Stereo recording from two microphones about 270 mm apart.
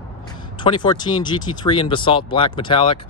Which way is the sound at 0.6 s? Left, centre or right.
Centre.